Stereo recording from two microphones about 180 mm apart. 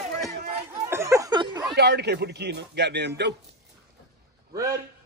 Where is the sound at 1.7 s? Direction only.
65° right (ahead or behind).